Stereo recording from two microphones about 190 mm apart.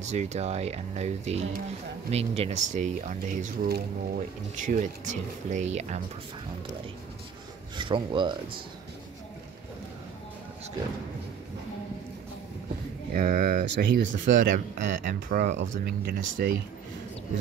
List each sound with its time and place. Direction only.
0.0 s speech: 35° right (ahead or behind)
7.7 s speech: 25° right (ahead or behind)
13.1 s speech: 45° right (ahead or behind)